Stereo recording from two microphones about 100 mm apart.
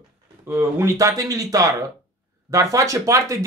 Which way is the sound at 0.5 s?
25° right (ahead or behind).